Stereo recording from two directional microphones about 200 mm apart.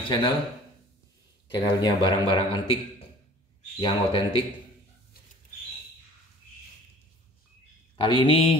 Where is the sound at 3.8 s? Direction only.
25° left (ahead or behind).